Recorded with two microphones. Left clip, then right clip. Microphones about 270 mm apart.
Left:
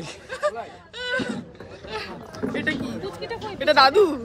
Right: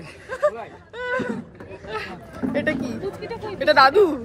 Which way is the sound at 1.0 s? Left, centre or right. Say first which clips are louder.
Right 1 dB; right.